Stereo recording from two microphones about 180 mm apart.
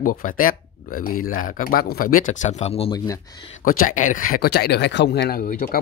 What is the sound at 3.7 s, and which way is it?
Speech, 50° left (ahead or behind).